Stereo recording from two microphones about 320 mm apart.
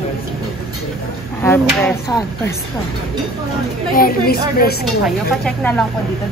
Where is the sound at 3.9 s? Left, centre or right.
Left.